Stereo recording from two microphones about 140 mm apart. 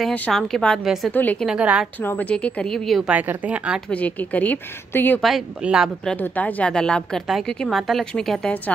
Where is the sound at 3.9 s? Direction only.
10° left (ahead or behind).